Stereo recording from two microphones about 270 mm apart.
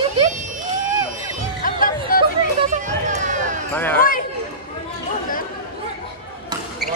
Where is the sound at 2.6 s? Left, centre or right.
Right.